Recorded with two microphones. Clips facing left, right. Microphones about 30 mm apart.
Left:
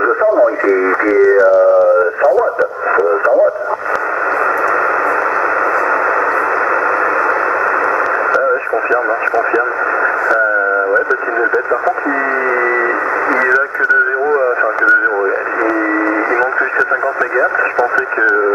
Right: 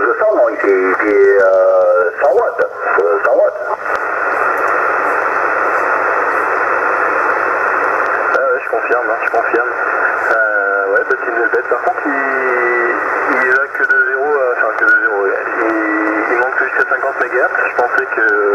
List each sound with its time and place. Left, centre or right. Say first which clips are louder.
0.2 s radio: left 1 dB; centre
13.5 s radio: even; centre
17.4 s radio: even; centre